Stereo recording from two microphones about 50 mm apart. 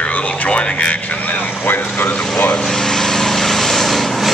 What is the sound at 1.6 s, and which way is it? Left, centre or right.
Speech, left.